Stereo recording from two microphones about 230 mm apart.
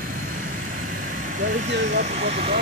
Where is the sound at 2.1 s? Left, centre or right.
Right.